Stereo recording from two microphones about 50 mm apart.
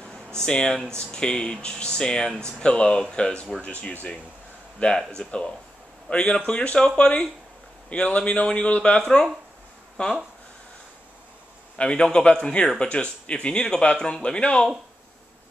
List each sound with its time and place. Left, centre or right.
0.4 s speech: centre
4.7 s speech: centre
11.8 s speech: left